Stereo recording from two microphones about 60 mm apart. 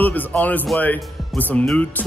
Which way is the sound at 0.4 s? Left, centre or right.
Left.